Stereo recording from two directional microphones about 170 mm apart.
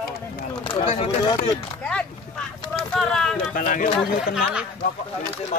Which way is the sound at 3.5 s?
50° left (ahead or behind).